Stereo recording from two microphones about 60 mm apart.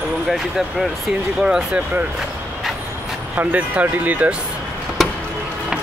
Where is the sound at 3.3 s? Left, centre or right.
Right.